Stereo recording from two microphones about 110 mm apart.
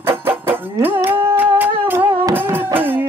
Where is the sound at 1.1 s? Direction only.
15° right (ahead or behind).